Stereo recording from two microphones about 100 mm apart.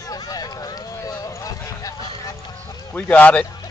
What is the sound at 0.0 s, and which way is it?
Run, 40° left (ahead or behind).